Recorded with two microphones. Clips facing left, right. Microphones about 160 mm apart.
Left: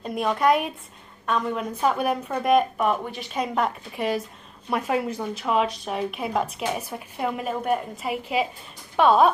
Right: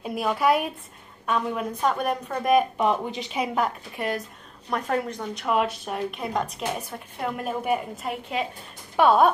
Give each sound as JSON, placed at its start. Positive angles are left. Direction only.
{"t": 0.0, "sound": "a woman's voice", "side_deg": -5}
{"t": 2.8, "sound": "speech", "side_deg": -20}
{"t": 3.3, "sound": "a woman's voice", "side_deg": -5}